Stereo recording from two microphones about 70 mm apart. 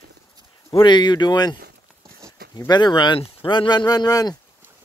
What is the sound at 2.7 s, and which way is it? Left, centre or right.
Speech, left.